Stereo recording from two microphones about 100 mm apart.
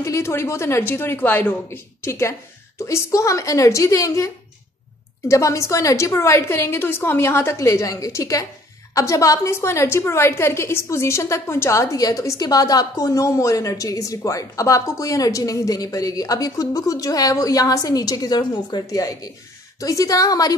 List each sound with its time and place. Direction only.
0.0 s a woman's voice: 30° left (ahead or behind)
5.3 s a woman's voice: 30° left (ahead or behind)